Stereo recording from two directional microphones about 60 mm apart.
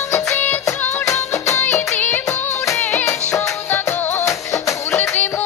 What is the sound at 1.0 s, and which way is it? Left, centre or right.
Music, left.